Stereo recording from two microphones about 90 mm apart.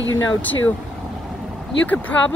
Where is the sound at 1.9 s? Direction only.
15° left (ahead or behind).